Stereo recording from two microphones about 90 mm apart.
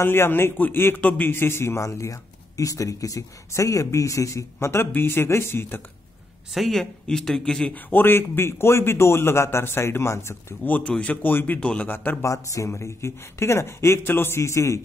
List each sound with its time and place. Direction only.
0.0 s a man's voice: 25° left (ahead or behind)
6.5 s a man's voice: centre (ahead or behind); by 12.2 s 20° left (ahead or behind)
12.2 s speech: 35° left (ahead or behind)